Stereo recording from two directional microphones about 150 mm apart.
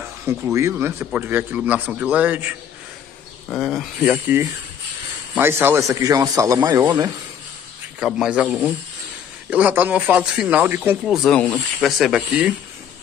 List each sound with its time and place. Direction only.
0.3 s speech: 20° right (ahead or behind)
3.5 s a man's voice: centre (ahead or behind); by 7.1 s 25° right (ahead or behind)
8.0 s speech: 5° right (ahead or behind)
11.1 s speech: centre (ahead or behind)